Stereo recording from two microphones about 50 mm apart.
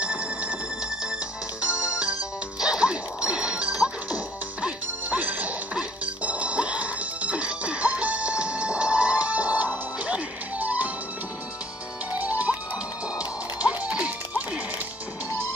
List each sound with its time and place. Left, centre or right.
0.0 s music: right
1.6 s music: right
12.1 s music: right
13.7 s music: right